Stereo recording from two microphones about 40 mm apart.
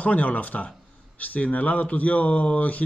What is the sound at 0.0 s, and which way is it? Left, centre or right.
A man's voice, left.